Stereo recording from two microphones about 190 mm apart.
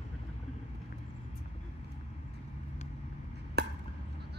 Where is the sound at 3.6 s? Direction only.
60° right (ahead or behind).